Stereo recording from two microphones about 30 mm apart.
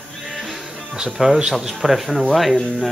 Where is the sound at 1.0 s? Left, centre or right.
Centre.